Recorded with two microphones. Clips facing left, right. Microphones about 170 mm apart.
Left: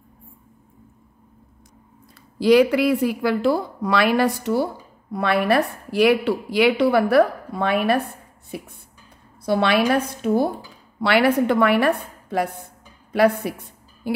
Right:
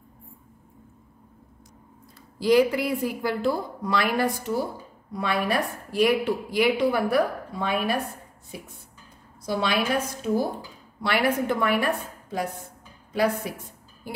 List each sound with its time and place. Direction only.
2.3 s a woman's voice: 75° left (ahead or behind)
9.5 s a woman's voice: 65° left (ahead or behind)
11.0 s a woman's voice: 75° left (ahead or behind)
14.0 s a woman's voice: 75° left (ahead or behind)